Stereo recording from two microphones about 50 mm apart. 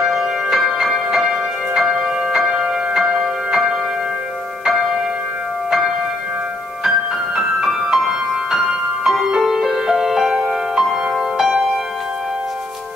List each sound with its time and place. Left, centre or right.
0.0 s music: centre
7.3 s music: centre